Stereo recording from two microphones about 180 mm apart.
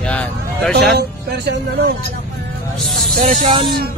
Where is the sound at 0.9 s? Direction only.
70° right (ahead or behind).